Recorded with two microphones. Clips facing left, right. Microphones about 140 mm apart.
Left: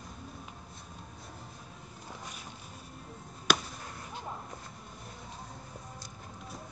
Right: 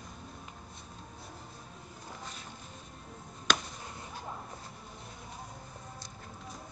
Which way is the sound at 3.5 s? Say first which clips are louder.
Left 2 dB; 5° left (ahead or behind).